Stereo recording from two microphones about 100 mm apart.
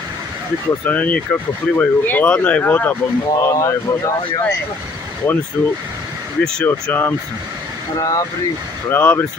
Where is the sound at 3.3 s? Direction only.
35° left (ahead or behind).